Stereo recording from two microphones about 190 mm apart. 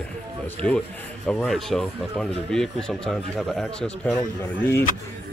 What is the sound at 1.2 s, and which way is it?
Speech, 5° left (ahead or behind).